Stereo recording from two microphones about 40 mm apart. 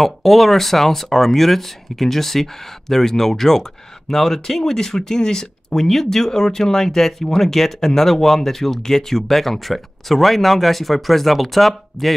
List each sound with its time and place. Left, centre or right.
0.0 s speech: centre